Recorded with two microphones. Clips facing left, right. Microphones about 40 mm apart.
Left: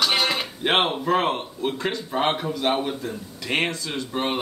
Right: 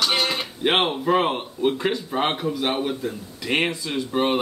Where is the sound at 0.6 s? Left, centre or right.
Centre.